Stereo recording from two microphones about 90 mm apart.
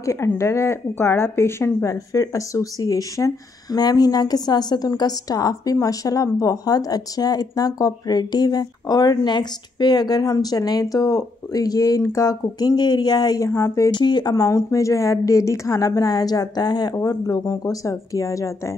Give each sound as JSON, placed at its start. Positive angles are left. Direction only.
{"t": 0.0, "sound": "speech", "side_deg": 35}
{"t": 13.5, "sound": "a woman's voice", "side_deg": 30}
{"t": 13.8, "sound": "speech", "side_deg": 55}
{"t": 14.3, "sound": "a woman's voice", "side_deg": 35}